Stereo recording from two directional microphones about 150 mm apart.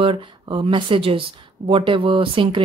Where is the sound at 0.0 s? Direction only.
35° right (ahead or behind).